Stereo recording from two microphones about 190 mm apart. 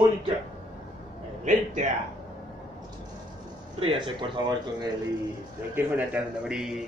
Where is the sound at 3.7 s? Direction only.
30° right (ahead or behind).